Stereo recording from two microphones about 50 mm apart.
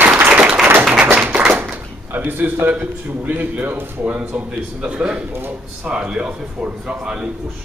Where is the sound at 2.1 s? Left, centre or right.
Right.